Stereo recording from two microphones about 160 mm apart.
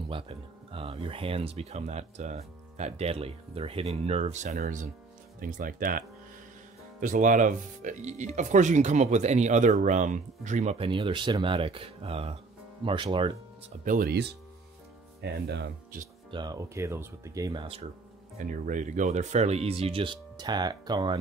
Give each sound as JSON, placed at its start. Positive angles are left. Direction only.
{"t": 0.1, "sound": "speech", "side_deg": -35}
{"t": 10.9, "sound": "speech", "side_deg": -30}
{"t": 13.8, "sound": "speech", "side_deg": -70}
{"t": 15.2, "sound": "speech", "side_deg": -85}
{"t": 16.3, "sound": "speech", "side_deg": -25}
{"t": 18.4, "sound": "speech", "side_deg": -55}